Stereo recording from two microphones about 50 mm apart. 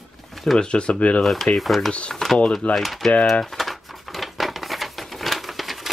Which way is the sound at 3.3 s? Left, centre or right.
Centre.